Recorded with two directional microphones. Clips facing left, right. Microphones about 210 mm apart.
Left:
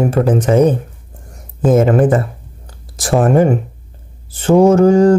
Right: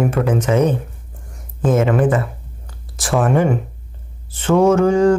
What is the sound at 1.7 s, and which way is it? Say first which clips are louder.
Speech: left 4 dB; 40° left (ahead or behind).